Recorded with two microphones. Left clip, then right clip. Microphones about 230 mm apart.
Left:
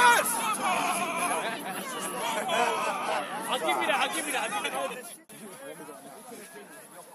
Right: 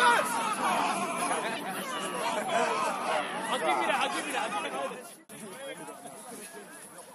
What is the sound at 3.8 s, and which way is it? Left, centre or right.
Chatter, left.